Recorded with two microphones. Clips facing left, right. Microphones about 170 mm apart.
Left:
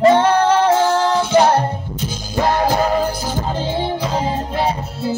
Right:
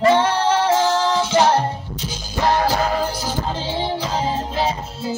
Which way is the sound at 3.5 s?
55° left (ahead or behind).